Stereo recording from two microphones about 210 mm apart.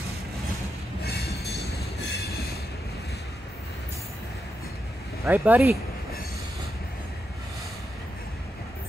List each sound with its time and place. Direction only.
5.2 s speech: 10° right (ahead or behind)